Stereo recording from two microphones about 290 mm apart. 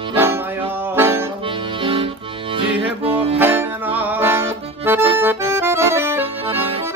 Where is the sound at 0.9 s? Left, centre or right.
Centre.